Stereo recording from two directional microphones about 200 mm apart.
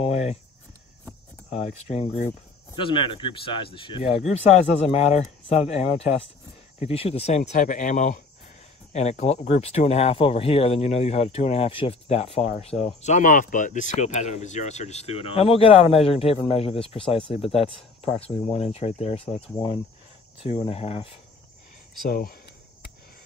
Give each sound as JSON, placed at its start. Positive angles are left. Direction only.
{"t": 0.0, "sound": "cricket", "side_deg": 30}
{"t": 1.5, "sound": "speech", "side_deg": 35}
{"t": 2.7, "sound": "speech", "side_deg": 25}
{"t": 22.0, "sound": "speech", "side_deg": 50}